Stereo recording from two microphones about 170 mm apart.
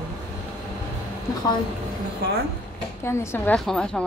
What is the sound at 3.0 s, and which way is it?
Speech, 15° left (ahead or behind).